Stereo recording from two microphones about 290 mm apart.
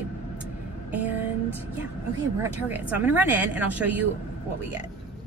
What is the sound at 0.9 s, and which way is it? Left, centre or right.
Speech, centre.